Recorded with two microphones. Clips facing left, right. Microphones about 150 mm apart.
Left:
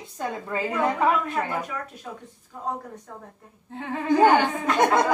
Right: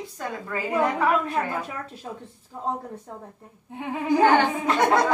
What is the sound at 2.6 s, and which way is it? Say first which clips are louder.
Speech: right 2 dB; 25° right (ahead or behind).